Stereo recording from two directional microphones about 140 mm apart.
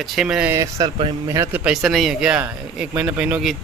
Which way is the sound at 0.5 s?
25° right (ahead or behind).